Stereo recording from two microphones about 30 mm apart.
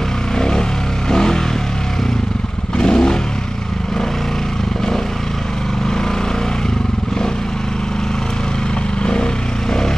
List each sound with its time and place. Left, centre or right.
0.4 s vehicle: left
1.1 s a sound: centre
2.8 s vehicle: left